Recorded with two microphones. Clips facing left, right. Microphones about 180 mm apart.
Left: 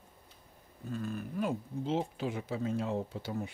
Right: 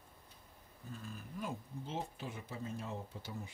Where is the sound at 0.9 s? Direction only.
65° left (ahead or behind).